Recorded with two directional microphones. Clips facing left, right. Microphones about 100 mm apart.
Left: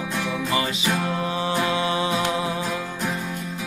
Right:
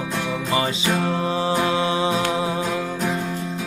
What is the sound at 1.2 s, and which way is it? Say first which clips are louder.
Music: right 3 dB; 30° right (ahead or behind).